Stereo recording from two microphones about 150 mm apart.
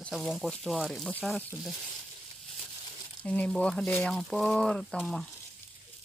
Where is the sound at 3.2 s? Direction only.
10° left (ahead or behind).